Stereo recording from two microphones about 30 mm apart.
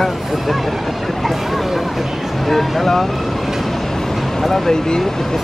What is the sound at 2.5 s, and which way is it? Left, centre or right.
Speech, centre.